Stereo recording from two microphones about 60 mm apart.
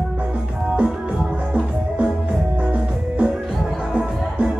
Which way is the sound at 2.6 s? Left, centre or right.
Right.